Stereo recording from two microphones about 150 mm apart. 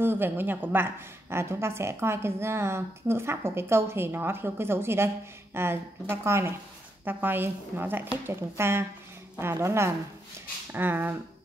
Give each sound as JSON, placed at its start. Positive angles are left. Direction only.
{"t": 0.0, "sound": "speech", "side_deg": -15}